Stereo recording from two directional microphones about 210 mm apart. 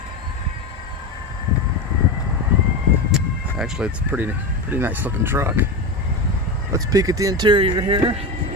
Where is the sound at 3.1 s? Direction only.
5° right (ahead or behind).